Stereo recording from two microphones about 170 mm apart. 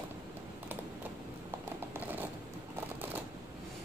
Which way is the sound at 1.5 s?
15° right (ahead or behind).